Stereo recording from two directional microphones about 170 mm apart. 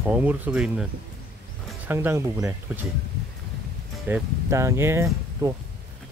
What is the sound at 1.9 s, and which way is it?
Speech, 10° right (ahead or behind).